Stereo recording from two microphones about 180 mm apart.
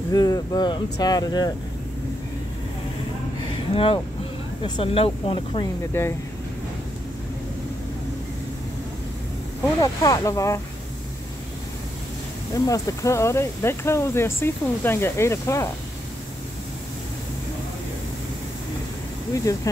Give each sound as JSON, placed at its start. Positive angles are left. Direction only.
{"t": 0.1, "sound": "speech", "side_deg": 20}
{"t": 3.7, "sound": "speech", "side_deg": 30}
{"t": 5.9, "sound": "speech", "side_deg": 15}
{"t": 9.8, "sound": "speech", "side_deg": 20}
{"t": 12.5, "sound": "speech", "side_deg": 20}
{"t": 19.3, "sound": "speech", "side_deg": 20}